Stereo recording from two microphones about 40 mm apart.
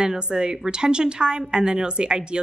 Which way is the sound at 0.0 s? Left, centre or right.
Centre.